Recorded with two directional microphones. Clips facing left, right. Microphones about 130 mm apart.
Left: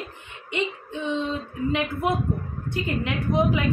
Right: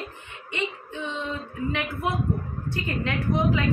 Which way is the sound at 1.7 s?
20° left (ahead or behind).